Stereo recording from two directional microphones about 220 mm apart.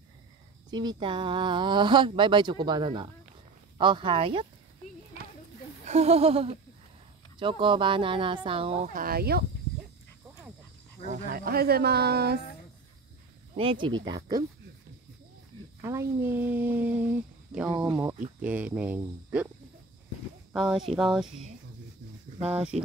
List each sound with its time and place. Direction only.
0.7 s speech: 20° right (ahead or behind)
5.9 s speech: 30° right (ahead or behind)
8.8 s speech: 40° right (ahead or behind)
11.1 s speech: 40° right (ahead or behind)
13.6 s speech: 25° right (ahead or behind)
15.8 s speech: 10° right (ahead or behind)
17.6 s speech: 20° right (ahead or behind)
18.4 s speech: 5° right (ahead or behind)
20.5 s speech: centre (ahead or behind)
22.7 s speech: 30° right (ahead or behind)